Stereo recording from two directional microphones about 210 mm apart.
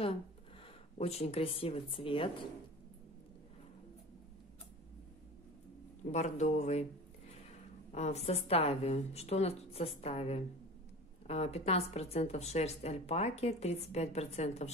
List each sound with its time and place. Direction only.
0.9 s a woman's voice: 30° left (ahead or behind)
6.1 s speech: 35° left (ahead or behind)
7.9 s a woman's voice: 30° left (ahead or behind)